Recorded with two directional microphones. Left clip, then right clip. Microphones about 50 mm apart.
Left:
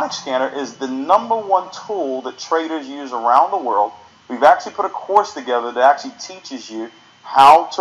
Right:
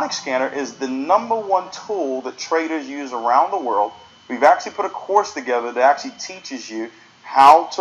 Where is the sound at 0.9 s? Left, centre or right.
Centre.